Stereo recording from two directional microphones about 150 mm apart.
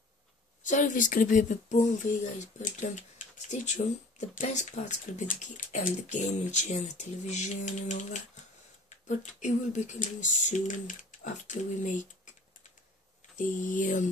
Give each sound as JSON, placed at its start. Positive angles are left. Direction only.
{"t": 0.7, "sound": "speech", "side_deg": 60}
{"t": 13.4, "sound": "speech", "side_deg": 60}